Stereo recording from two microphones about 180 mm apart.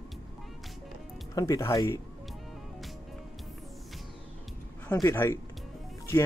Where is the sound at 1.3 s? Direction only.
20° left (ahead or behind).